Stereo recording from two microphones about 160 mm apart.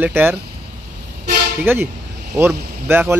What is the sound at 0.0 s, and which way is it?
Speech, 15° right (ahead or behind).